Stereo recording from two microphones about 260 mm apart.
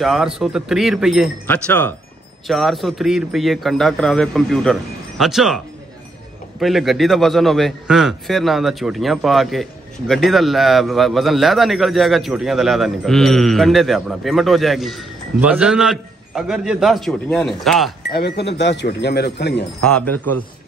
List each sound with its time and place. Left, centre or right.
0.0 s a man's voice: centre
6.6 s a man's voice: centre
18.1 s speech: left
19.8 s a man's voice: centre